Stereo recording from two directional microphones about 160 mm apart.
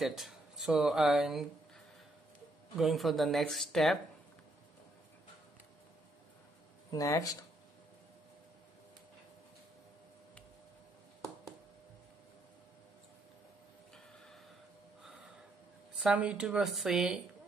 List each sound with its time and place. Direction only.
0.0 s speech: centre (ahead or behind)
2.8 s speech: centre (ahead or behind)
6.9 s speech: 20° left (ahead or behind)
16.0 s speech: 5° right (ahead or behind)